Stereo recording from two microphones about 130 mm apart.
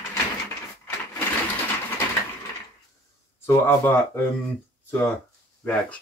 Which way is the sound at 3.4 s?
15° left (ahead or behind).